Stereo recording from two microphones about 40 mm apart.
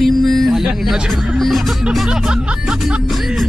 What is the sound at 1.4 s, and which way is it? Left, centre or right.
Speech, centre.